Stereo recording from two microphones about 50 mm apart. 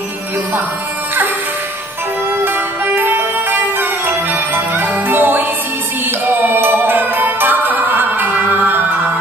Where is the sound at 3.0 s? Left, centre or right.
Right.